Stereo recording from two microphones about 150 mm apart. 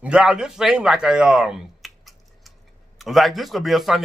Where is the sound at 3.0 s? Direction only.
Centre (ahead or behind).